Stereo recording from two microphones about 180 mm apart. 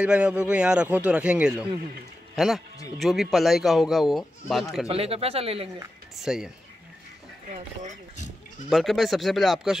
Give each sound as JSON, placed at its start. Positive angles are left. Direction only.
{"t": 0.0, "sound": "speech", "side_deg": -5}
{"t": 4.8, "sound": "speech", "side_deg": -35}
{"t": 6.1, "sound": "speech", "side_deg": 0}
{"t": 7.5, "sound": "speech", "side_deg": -40}
{"t": 8.6, "sound": "speech", "side_deg": 0}